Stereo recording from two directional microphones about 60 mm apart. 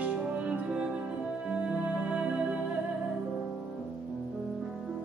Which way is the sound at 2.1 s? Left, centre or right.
Centre.